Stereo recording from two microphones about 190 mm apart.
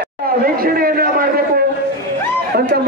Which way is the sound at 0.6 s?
50° right (ahead or behind).